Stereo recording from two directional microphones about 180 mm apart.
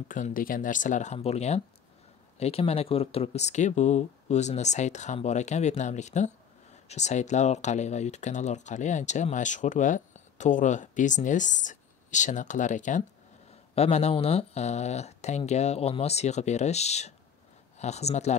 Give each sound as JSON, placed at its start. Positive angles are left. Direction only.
{"t": 0.1, "sound": "speech", "side_deg": 50}